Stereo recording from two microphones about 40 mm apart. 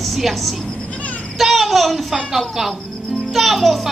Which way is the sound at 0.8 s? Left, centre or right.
Left.